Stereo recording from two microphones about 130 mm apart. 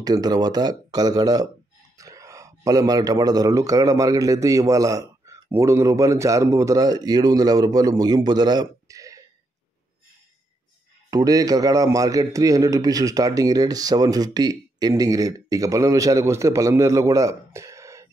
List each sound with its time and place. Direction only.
0.0 s speech: 30° right (ahead or behind)
11.1 s speech: 25° right (ahead or behind)